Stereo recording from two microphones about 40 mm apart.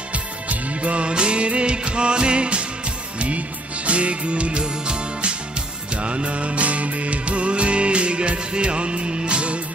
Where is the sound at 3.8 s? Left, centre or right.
Right.